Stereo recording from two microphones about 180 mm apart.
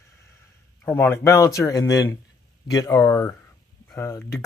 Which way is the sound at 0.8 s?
10° left (ahead or behind).